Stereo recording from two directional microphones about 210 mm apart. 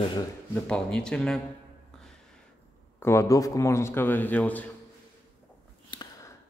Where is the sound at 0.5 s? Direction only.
5° left (ahead or behind).